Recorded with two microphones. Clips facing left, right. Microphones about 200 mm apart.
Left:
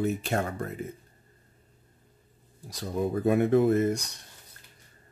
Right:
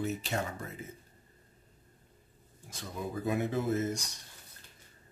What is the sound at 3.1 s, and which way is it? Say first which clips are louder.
Speech: left 9 dB; 55° left (ahead or behind).